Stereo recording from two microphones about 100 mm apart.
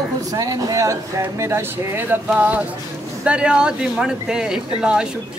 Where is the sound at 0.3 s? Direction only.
35° right (ahead or behind).